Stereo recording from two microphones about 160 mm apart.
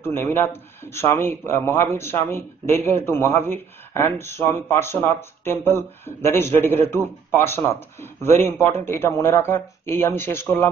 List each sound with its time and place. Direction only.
0.0 s a man's voice: 15° left (ahead or behind)